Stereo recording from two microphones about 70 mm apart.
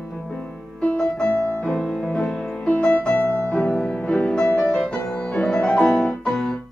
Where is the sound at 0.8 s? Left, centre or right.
Centre.